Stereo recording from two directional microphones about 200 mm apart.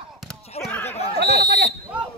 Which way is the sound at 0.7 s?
10° left (ahead or behind).